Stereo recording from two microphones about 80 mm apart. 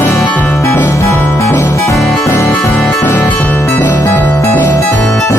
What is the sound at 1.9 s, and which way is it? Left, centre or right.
Music, centre.